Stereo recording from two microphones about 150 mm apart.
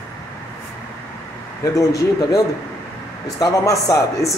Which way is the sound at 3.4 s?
20° left (ahead or behind).